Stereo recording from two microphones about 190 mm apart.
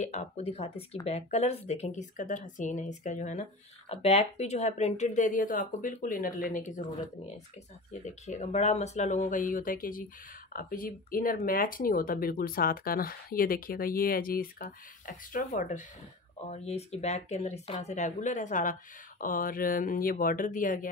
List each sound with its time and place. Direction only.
0.0 s speech: 35° left (ahead or behind)
7.9 s speech: 40° left (ahead or behind)